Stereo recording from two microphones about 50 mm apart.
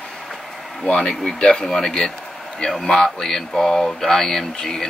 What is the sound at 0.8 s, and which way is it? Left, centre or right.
Speech, centre.